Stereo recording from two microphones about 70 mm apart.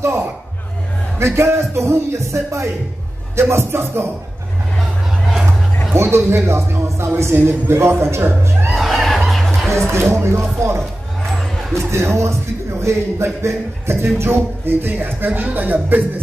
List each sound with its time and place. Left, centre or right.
0.0 s speech: right
5.9 s speech: right
8.6 s music: centre
9.9 s speech: right
11.9 s speech: right